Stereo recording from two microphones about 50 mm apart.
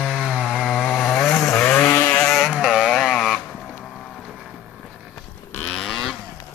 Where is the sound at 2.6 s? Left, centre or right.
Centre.